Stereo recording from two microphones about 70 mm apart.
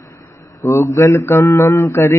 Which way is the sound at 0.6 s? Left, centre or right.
Left.